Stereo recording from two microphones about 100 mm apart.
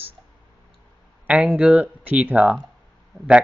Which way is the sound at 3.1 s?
Centre (ahead or behind).